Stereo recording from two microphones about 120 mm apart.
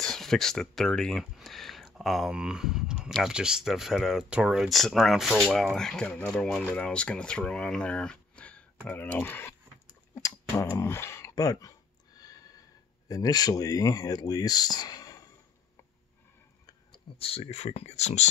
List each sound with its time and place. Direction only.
0.0 s speech: 5° left (ahead or behind); by 9.6 s 20° left (ahead or behind)
9.8 s clicking: 30° left (ahead or behind)
12.2 s a sound: 30° left (ahead or behind)
13.1 s speech: 30° left (ahead or behind)
17.2 s speech: 55° left (ahead or behind); by 18.3 s 70° left (ahead or behind)